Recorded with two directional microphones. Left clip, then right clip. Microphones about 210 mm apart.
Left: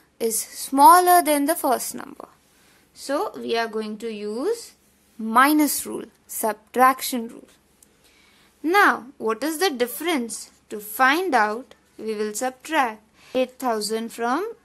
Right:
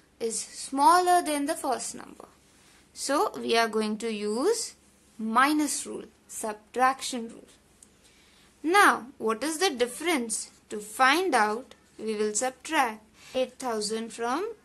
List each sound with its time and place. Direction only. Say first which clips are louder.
0.2 s a woman's voice: left 6 dB; 35° left (ahead or behind)
3.0 s a woman's voice: left 1 dB; 10° left (ahead or behind)
5.2 s a woman's voice: left 6 dB; 25° left (ahead or behind)
8.6 s speech: left 3 dB; 20° left (ahead or behind)